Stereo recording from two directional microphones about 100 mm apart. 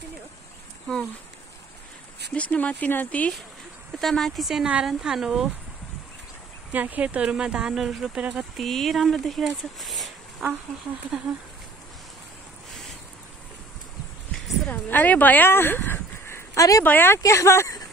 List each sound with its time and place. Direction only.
2.3 s speech: 15° left (ahead or behind)
4.0 s speech: 5° left (ahead or behind)
6.7 s speech: 15° right (ahead or behind); by 10.5 s centre (ahead or behind)
14.7 s speech: 20° left (ahead or behind); by 16.8 s 35° left (ahead or behind)
16.8 s speech: 20° left (ahead or behind)